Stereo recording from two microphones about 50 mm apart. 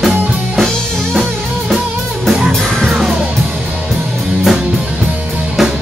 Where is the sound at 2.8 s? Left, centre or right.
Centre.